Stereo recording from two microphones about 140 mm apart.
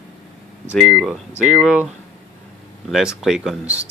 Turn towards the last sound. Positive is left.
turn(degrees=-5)  # may be behind; listen again after turning